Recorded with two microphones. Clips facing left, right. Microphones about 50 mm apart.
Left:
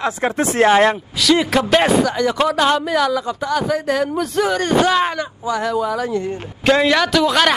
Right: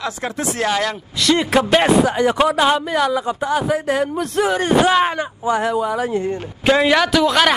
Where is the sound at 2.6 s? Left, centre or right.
Centre.